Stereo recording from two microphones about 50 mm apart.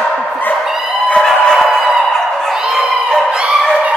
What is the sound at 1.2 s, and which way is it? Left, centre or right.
Music, centre.